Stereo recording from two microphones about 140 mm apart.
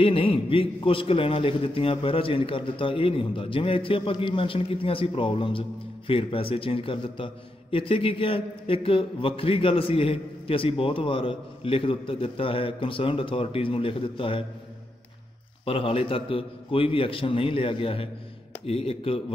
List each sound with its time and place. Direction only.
0.0 s a man's voice: 40° left (ahead or behind)
15.6 s a man's voice: 40° left (ahead or behind)